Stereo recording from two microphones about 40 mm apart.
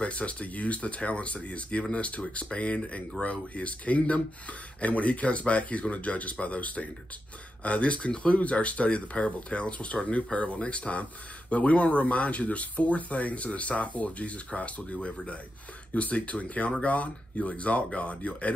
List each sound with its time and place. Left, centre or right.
0.0 s speech: left